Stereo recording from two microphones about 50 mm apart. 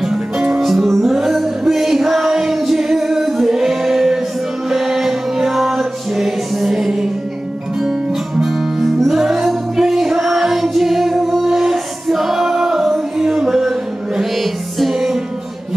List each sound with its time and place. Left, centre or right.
0.0 s music: centre
8.4 s music: centre